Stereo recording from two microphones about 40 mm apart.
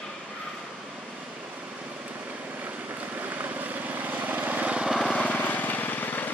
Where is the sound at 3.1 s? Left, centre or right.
Right.